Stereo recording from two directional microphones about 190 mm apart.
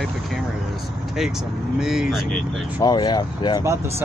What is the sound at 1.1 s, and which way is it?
Speech, centre (ahead or behind).